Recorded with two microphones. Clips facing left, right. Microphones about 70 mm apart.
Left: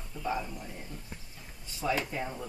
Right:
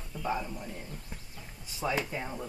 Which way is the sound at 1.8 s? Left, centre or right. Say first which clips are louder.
Left 1 dB; centre.